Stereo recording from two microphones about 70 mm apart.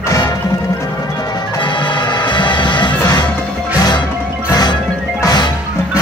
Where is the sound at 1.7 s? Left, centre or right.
Left.